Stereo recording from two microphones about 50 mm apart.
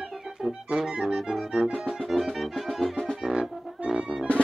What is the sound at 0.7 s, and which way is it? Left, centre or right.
Music, centre.